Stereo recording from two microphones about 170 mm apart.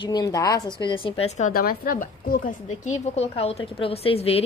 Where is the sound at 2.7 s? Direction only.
40° left (ahead or behind).